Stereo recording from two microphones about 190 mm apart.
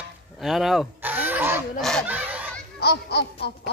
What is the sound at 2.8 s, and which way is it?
Music, 60° left (ahead or behind).